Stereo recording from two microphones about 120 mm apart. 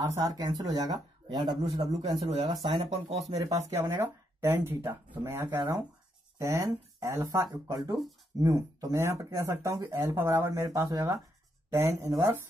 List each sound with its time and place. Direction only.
0.0 s speech: 35° right (ahead or behind)
3.1 s speech: 60° right (ahead or behind)
3.9 s speech: 20° right (ahead or behind)
10.0 s speech: 20° right (ahead or behind)